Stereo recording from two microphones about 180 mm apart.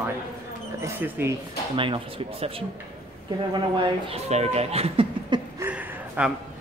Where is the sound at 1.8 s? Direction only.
30° right (ahead or behind).